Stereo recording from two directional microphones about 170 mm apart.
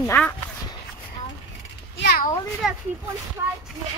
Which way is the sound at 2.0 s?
65° left (ahead or behind).